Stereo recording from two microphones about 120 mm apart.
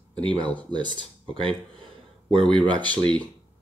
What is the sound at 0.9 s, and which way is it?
Speech, 45° right (ahead or behind).